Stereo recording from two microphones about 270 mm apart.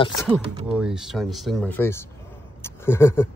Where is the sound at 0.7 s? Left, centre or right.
Centre.